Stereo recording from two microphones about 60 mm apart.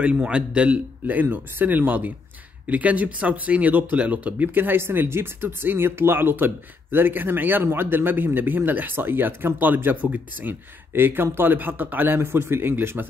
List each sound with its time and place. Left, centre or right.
0.0 s a man's voice: right